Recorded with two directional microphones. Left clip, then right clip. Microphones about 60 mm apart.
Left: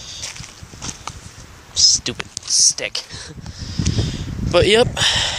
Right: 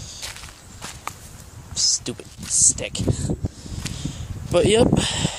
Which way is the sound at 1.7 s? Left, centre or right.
Right.